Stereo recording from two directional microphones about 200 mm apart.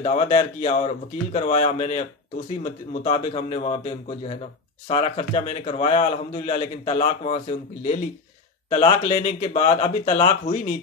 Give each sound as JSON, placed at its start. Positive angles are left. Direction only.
{"t": 0.0, "sound": "a man's voice", "side_deg": 30}